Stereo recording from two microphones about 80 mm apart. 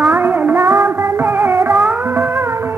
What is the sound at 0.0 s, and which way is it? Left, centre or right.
Music, right.